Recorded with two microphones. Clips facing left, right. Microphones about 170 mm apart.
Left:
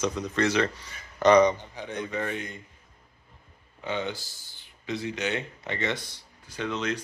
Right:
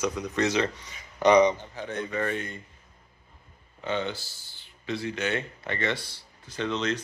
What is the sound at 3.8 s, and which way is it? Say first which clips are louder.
Speech: right 1 dB; 15° left (ahead or behind).